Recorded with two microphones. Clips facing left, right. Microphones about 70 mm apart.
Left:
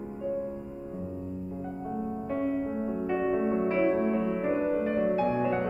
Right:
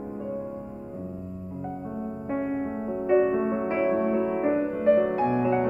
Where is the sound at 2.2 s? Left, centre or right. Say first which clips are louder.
Right 2 dB; right.